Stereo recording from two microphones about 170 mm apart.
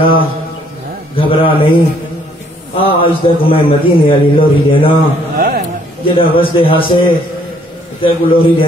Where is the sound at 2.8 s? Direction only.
30° left (ahead or behind).